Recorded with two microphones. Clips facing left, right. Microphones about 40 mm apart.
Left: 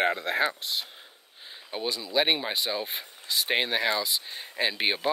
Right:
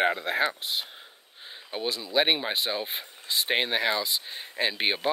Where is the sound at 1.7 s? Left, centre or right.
Centre.